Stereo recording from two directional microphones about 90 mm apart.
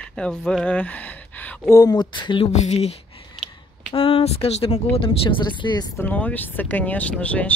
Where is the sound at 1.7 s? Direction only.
45° left (ahead or behind).